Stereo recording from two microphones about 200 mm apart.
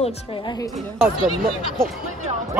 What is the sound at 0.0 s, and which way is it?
Speech, 20° left (ahead or behind).